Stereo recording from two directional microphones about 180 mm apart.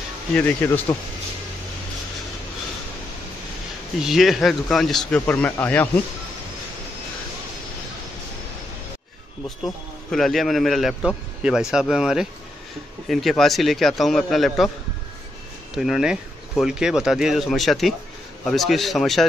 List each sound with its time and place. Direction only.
0.4 s speech: 10° left (ahead or behind)
4.0 s speech: centre (ahead or behind)
10.1 s speech: centre (ahead or behind)
15.7 s speech: 5° right (ahead or behind)